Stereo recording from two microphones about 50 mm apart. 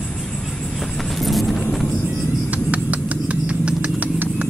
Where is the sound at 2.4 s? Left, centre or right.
Right.